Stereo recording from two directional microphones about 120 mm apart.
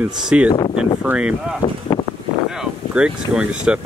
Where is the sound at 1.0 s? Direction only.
10° right (ahead or behind).